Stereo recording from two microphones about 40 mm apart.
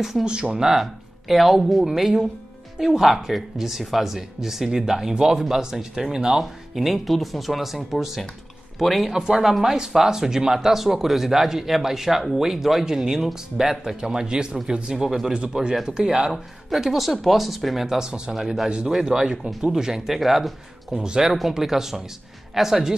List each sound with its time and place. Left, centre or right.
0.2 s speech: right
0.7 s speech: centre
6.7 s speech: centre
9.1 s speech: centre
15.5 s speech: right
16.7 s speech: centre
17.8 s speech: centre
21.0 s speech: centre